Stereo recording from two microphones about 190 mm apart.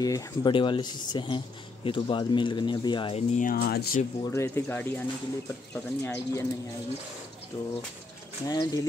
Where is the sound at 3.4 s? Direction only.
50° left (ahead or behind).